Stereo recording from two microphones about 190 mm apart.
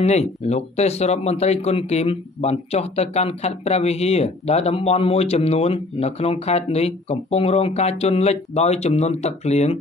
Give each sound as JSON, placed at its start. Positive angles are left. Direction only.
{"t": 0.0, "sound": "speech", "side_deg": 35}